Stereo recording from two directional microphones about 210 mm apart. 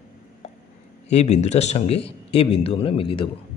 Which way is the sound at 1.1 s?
30° left (ahead or behind).